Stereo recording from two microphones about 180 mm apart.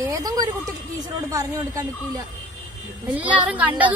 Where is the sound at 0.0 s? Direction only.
20° right (ahead or behind).